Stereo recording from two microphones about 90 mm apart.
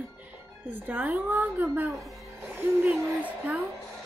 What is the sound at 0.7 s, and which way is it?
Speech, 20° right (ahead or behind).